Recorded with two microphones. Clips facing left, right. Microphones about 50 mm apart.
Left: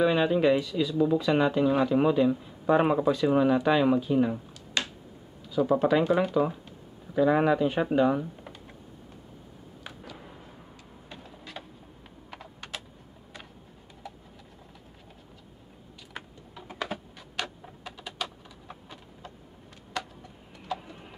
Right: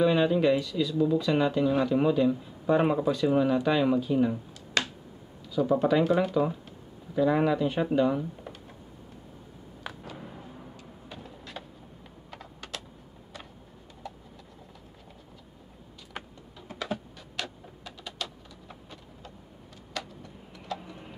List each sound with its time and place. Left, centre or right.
0.0 s speech: centre
11.1 s vehicle: centre
12.3 s computer keyboard: centre
16.6 s typing: left
17.4 s a sound: centre
20.6 s a sound: centre